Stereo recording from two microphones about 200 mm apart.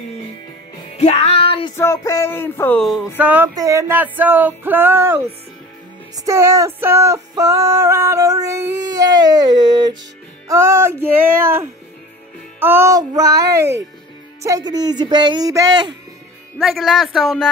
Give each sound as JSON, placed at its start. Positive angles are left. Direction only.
{"t": 0.9, "sound": "music", "side_deg": 30}
{"t": 1.8, "sound": "speech", "side_deg": 15}
{"t": 3.2, "sound": "music", "side_deg": -10}
{"t": 14.4, "sound": "speech", "side_deg": -20}
{"t": 16.5, "sound": "speech", "side_deg": 0}